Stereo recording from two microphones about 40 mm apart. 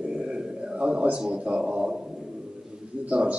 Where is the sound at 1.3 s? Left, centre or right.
Right.